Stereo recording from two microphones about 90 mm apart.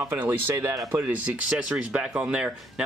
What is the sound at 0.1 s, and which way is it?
Speech, 20° right (ahead or behind).